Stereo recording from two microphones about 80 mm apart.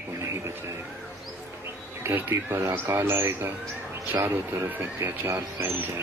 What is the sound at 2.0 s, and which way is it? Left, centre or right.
Music, right.